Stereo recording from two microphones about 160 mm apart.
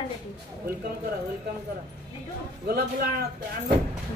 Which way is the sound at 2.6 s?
70° right (ahead or behind).